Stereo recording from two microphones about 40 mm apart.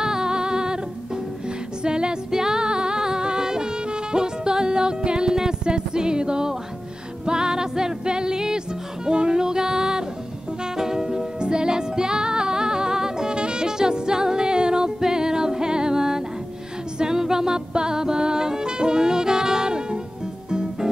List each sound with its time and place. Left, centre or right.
0.0 s music: centre
1.8 s music: right